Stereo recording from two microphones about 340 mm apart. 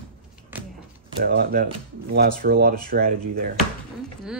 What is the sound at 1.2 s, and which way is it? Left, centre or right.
Speech, right.